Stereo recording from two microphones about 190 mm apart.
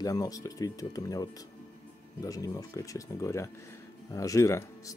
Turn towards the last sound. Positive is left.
turn(degrees=15)  # may be behind; listen again after turning